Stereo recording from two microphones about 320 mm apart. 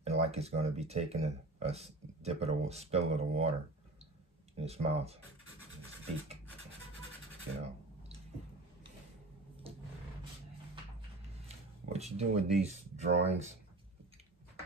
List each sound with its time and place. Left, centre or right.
0.0 s speech: centre
4.6 s speech: centre
11.4 s speech: centre